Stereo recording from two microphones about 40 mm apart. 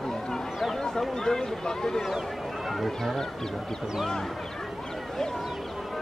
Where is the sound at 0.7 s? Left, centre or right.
Centre.